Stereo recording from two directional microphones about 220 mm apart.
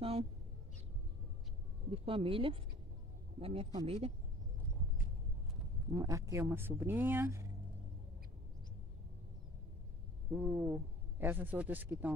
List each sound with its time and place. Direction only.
1.9 s a man's voice: 25° right (ahead or behind)
5.9 s a man's voice: 15° right (ahead or behind)
10.3 s a man's voice: 10° right (ahead or behind)